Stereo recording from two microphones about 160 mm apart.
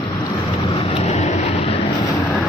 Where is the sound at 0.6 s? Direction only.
40° left (ahead or behind).